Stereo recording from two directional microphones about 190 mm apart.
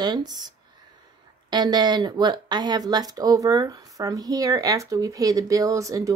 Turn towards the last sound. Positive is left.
turn(degrees=-15)  # may be behind; listen again after turning